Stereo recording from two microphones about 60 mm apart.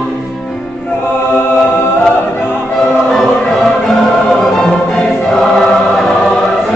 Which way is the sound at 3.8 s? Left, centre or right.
Centre.